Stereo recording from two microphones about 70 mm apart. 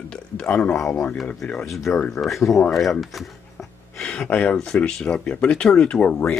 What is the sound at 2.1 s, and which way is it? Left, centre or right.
Speech, centre.